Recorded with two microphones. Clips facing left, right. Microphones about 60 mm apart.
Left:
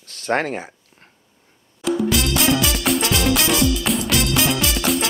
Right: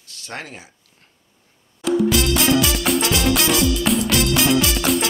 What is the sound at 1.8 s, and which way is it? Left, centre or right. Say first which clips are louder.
Music: right 2 dB; centre.